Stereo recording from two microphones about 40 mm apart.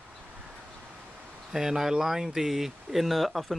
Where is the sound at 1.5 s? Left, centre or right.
Centre.